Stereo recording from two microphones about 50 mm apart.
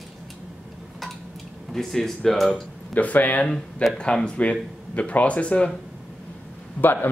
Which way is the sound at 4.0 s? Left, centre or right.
Centre.